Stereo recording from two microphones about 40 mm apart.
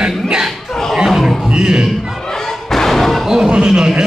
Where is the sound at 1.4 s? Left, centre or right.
Centre.